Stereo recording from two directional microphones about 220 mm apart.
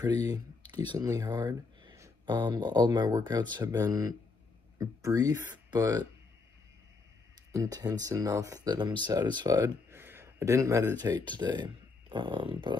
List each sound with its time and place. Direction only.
0.0 s speech: 15° right (ahead or behind)
7.5 s speech: 15° right (ahead or behind)